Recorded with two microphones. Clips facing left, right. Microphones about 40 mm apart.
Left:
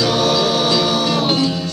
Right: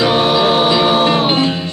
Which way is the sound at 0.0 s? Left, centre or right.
Right.